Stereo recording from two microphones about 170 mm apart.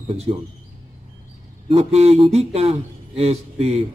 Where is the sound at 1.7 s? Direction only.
40° right (ahead or behind).